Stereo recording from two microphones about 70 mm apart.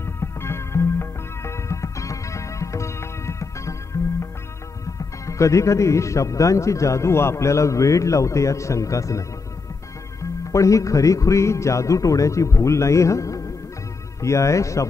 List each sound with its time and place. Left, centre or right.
0.0 s music: left
4.9 s speech: left
10.5 s speech: left